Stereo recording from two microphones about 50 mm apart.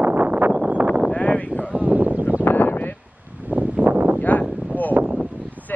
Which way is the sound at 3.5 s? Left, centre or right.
Right.